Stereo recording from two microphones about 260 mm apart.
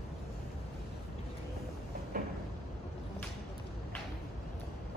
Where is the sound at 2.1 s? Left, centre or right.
Right.